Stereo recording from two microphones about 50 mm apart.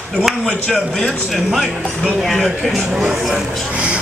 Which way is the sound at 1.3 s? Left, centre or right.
Centre.